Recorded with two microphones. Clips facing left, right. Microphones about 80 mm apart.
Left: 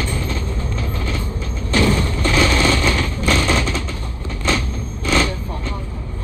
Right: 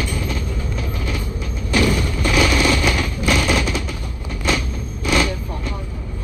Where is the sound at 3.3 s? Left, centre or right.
Left.